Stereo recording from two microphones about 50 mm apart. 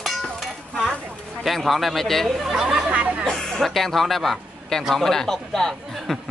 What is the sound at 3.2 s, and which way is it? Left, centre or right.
A man's voice, centre.